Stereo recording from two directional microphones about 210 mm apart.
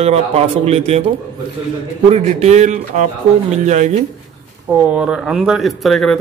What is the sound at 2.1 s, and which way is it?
Speech, 30° right (ahead or behind).